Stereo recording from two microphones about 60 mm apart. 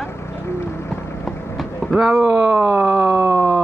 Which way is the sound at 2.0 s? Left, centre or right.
Right.